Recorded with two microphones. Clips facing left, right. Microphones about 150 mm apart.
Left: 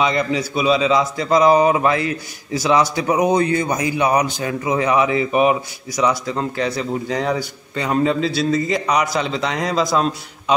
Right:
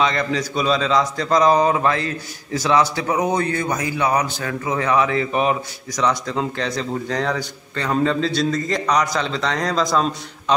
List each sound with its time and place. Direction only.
0.0 s a man's voice: 10° left (ahead or behind)